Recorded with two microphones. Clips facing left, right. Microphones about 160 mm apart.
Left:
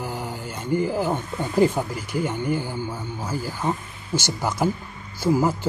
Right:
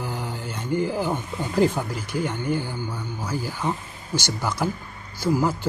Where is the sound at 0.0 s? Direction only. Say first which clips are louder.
Even; 10° left (ahead or behind).